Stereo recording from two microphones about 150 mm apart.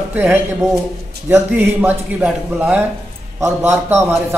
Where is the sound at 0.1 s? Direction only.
10° right (ahead or behind).